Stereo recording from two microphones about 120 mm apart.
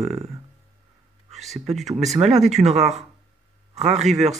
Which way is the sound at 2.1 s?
70° right (ahead or behind).